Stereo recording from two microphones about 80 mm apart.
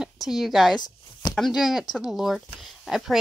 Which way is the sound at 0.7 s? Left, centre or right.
Left.